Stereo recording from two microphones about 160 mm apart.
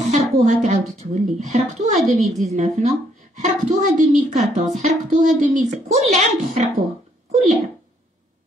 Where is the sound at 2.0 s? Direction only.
Centre (ahead or behind).